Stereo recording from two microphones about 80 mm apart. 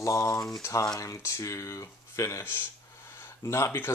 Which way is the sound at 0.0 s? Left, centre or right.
Left.